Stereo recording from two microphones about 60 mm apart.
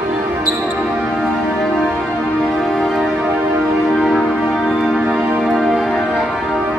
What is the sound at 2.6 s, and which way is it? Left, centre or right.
Music, centre.